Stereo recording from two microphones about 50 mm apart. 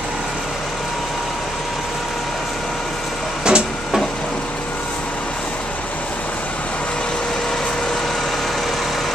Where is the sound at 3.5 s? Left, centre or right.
Right.